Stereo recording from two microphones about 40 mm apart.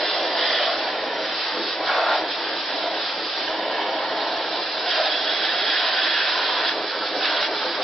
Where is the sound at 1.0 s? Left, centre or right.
Centre.